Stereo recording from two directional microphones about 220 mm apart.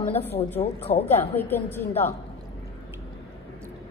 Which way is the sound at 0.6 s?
25° left (ahead or behind).